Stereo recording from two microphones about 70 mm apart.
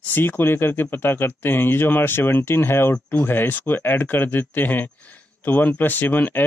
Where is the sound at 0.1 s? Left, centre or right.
Left.